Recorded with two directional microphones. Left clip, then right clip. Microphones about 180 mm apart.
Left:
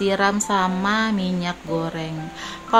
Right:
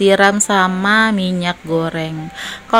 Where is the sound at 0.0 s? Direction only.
25° right (ahead or behind).